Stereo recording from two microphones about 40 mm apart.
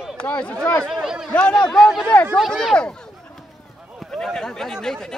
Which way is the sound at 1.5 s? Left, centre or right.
Centre.